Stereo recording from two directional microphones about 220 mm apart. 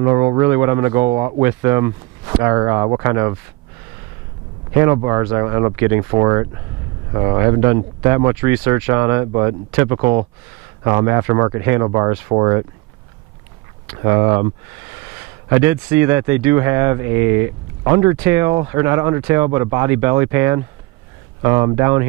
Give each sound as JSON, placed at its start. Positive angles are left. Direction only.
{"t": 0.0, "sound": "speech", "side_deg": -15}
{"t": 4.7, "sound": "speech", "side_deg": -15}
{"t": 14.0, "sound": "speech", "side_deg": -20}
{"t": 15.5, "sound": "speech", "side_deg": -10}